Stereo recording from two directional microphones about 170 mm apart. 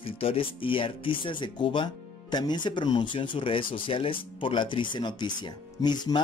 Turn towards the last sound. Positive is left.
turn(degrees=25)  # may be behind; listen again after turning